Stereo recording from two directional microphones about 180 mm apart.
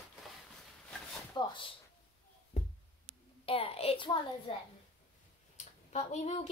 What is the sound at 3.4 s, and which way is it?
A child's voice, 30° left (ahead or behind).